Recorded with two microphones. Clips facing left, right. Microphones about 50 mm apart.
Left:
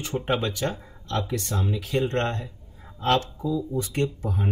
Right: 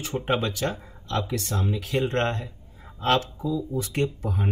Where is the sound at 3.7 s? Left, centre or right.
Centre.